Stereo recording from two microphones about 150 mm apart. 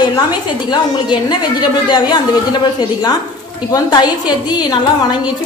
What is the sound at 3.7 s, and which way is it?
Speech, 25° left (ahead or behind).